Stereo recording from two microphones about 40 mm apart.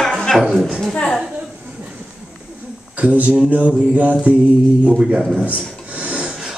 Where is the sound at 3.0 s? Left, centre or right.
Right.